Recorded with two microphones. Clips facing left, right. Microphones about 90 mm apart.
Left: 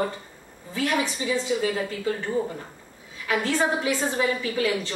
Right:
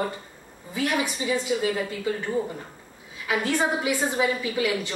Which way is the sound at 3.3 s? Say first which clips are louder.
Left 1 dB; 15° right (ahead or behind).